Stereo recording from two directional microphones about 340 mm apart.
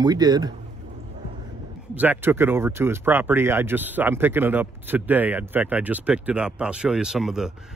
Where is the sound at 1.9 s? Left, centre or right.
Centre.